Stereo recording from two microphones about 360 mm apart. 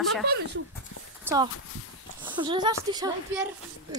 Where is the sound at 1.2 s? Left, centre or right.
Centre.